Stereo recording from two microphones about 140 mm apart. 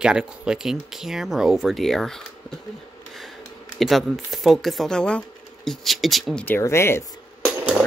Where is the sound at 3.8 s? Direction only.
Centre (ahead or behind).